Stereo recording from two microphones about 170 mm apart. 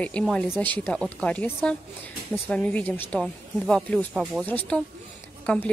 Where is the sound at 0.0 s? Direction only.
5° left (ahead or behind).